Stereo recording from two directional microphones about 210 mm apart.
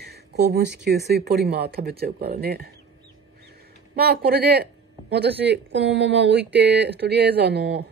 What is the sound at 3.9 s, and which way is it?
Speech, 50° right (ahead or behind).